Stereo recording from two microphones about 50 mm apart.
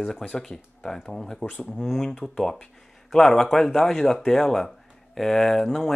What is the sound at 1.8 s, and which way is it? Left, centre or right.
Speech, centre.